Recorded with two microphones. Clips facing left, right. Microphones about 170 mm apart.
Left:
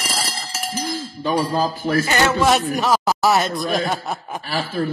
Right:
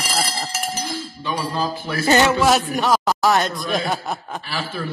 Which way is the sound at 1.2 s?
45° left (ahead or behind).